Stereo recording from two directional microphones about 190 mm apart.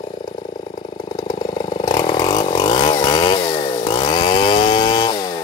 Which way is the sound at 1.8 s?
20° left (ahead or behind).